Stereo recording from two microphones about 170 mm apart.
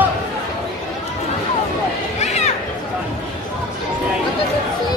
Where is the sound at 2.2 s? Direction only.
40° left (ahead or behind).